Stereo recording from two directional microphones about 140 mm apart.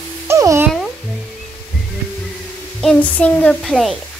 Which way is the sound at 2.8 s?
5° left (ahead or behind).